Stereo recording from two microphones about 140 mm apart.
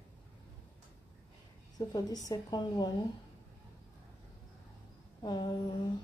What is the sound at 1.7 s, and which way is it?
Speech, 30° left (ahead or behind).